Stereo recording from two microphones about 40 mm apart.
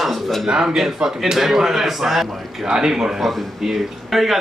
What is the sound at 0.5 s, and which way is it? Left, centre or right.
Speech, centre.